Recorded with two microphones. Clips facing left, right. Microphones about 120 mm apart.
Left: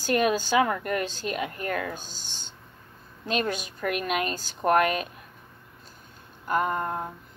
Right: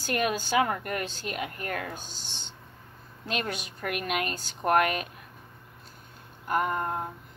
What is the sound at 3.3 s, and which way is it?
A woman's voice, 35° left (ahead or behind).